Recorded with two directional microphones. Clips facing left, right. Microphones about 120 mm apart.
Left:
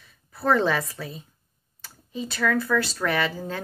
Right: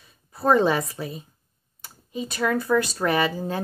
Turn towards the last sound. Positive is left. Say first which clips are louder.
# right 3 dB
turn(degrees=-15)  # may be behind; listen again after turning